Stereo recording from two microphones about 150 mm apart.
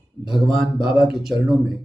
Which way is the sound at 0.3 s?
Centre (ahead or behind).